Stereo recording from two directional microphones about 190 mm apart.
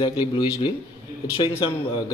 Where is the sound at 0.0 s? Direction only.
20° left (ahead or behind).